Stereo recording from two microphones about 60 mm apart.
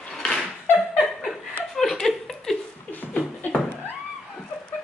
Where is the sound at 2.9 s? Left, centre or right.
Left.